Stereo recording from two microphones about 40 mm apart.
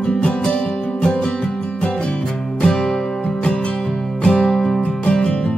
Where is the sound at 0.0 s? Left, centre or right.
Left.